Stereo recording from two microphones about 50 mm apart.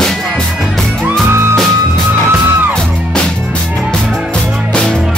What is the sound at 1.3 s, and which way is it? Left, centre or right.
Music, right.